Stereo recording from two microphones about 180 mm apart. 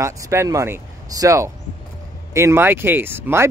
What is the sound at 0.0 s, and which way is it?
Speech, 15° right (ahead or behind).